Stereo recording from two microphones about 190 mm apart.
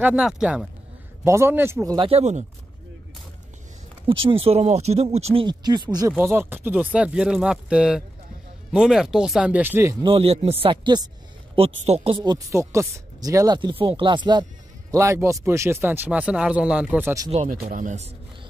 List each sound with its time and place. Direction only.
0.0 s speech: 5° right (ahead or behind)
1.2 s speech: 15° right (ahead or behind)
2.0 s speech: 35° right (ahead or behind)
4.1 s speech: 30° right (ahead or behind); by 9.9 s 10° right (ahead or behind)
10.0 s speech: 30° right (ahead or behind); by 17.3 s 15° right (ahead or behind)
17.3 s speech: 40° right (ahead or behind)